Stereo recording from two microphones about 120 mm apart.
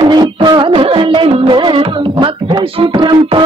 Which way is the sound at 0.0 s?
35° right (ahead or behind).